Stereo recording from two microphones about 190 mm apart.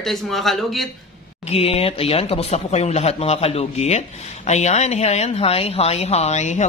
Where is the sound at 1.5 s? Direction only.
30° left (ahead or behind).